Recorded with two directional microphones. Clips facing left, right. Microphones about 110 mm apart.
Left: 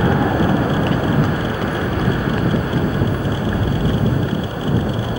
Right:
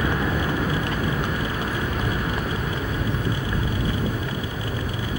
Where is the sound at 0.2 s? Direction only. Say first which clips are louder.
Left 8 dB; 40° left (ahead or behind).